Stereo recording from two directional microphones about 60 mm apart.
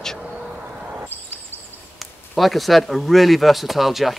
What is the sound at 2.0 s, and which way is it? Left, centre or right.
Speech, centre.